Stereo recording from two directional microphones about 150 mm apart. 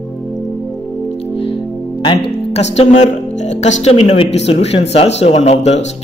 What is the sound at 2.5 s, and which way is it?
A man's voice, 45° left (ahead or behind).